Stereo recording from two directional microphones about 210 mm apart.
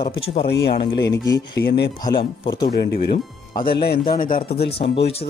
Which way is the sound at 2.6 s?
50° left (ahead or behind).